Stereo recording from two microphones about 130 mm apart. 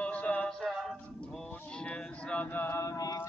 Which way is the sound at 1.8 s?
10° left (ahead or behind).